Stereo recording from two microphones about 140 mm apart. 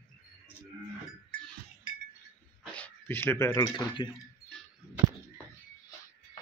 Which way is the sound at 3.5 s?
30° left (ahead or behind).